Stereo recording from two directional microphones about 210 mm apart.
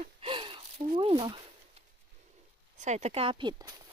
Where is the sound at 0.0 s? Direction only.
25° right (ahead or behind).